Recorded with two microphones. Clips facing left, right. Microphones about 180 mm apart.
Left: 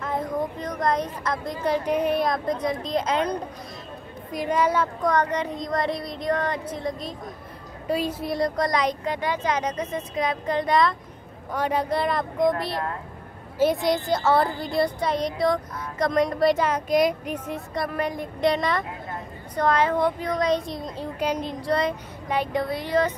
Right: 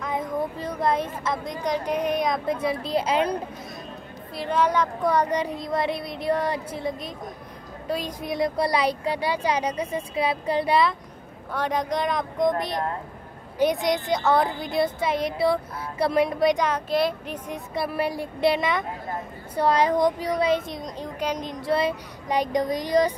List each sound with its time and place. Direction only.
0.0 s a sound: centre (ahead or behind)
1.2 s a woman's voice: centre (ahead or behind)
4.3 s a woman's voice: 15° left (ahead or behind)
5.0 s speech: 10° right (ahead or behind)
7.9 s speech: 5° left (ahead or behind); by 11.0 s 10° right (ahead or behind)
11.5 s a woman's voice: 10° left (ahead or behind)
17.7 s a woman's voice: 10° right (ahead or behind)
21.7 s speech: 10° right (ahead or behind)